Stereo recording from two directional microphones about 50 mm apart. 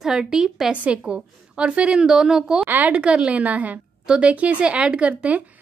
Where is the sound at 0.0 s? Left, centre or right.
Centre.